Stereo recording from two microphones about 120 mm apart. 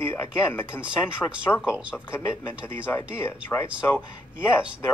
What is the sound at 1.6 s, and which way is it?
Speech, 5° right (ahead or behind).